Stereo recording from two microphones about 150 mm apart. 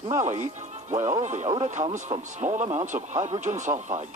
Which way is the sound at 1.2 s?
50° right (ahead or behind).